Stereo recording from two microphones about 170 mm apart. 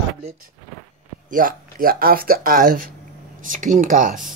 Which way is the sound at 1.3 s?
55° right (ahead or behind).